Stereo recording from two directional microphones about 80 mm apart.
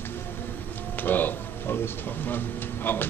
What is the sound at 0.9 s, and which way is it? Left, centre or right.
Speech, left.